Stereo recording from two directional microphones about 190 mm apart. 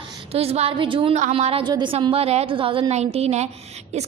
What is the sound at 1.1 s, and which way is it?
A woman's voice, 40° right (ahead or behind).